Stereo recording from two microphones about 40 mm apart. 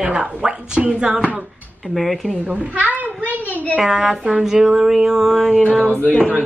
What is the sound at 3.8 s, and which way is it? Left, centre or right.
Speech, centre.